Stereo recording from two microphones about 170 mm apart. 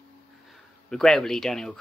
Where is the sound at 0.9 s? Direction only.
5° left (ahead or behind).